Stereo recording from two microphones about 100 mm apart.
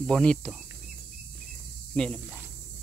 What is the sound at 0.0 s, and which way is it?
Speech, 10° left (ahead or behind).